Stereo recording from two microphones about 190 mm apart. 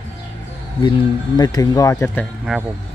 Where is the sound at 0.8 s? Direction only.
20° left (ahead or behind).